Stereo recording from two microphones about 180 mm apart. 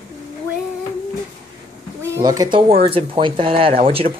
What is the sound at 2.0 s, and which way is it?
Speech, 20° right (ahead or behind).